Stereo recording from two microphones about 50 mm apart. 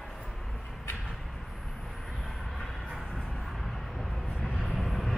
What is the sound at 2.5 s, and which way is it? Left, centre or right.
Vehicle, centre.